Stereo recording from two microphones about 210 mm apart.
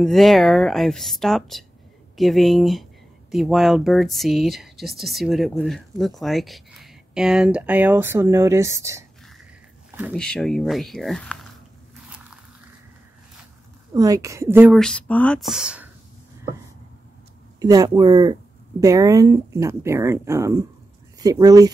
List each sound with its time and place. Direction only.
0.0 s speech: centre (ahead or behind)
10.1 s speech: 5° left (ahead or behind)
13.9 s speech: 15° right (ahead or behind)
14.8 s speech: 5° left (ahead or behind)
17.6 s speech: 15° right (ahead or behind)